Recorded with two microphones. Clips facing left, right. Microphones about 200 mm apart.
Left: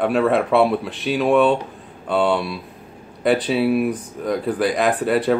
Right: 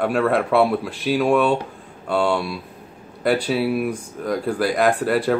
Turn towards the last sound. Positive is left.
turn(degrees=0)  # may be behind; listen again after turning